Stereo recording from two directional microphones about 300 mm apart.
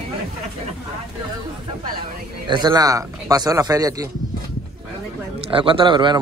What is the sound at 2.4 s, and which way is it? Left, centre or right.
A man's voice, centre.